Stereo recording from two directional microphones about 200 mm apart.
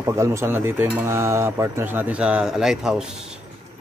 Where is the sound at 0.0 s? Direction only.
15° right (ahead or behind).